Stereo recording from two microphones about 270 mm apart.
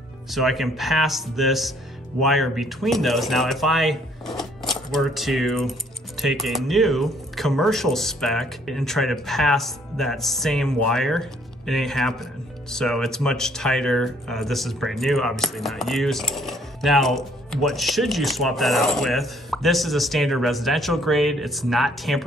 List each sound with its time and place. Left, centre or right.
0.3 s speech: centre